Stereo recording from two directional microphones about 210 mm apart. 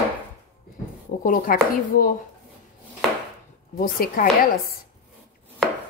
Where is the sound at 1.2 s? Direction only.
40° left (ahead or behind).